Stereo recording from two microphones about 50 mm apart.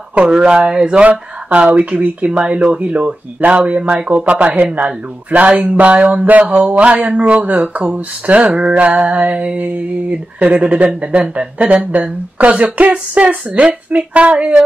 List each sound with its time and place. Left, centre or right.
0.1 s speech: right